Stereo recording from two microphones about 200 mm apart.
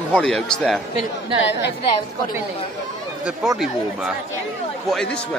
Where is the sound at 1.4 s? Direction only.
60° left (ahead or behind).